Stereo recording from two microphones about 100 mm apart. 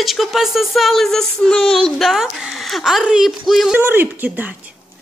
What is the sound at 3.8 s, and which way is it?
Speech, 20° right (ahead or behind).